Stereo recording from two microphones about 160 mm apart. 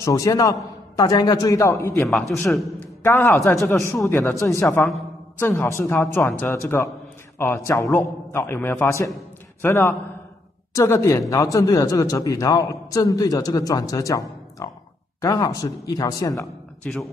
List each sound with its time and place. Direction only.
0.0 s speech: 20° left (ahead or behind)
2.0 s a man's voice: centre (ahead or behind)
3.0 s a man's voice: 15° left (ahead or behind)
16.8 s a man's voice: 10° left (ahead or behind)